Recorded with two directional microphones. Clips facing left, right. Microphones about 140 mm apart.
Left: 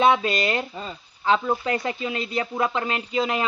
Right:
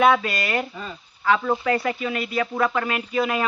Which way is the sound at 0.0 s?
25° left (ahead or behind).